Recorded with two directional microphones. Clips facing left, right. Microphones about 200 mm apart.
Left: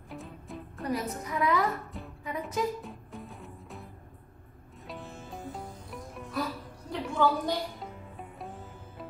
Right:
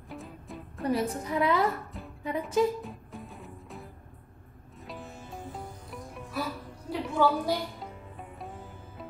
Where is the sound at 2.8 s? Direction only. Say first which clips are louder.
Right 1 dB; centre (ahead or behind).